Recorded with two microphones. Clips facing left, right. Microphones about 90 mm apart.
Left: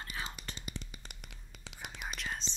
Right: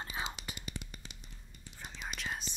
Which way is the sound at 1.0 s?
75° left (ahead or behind).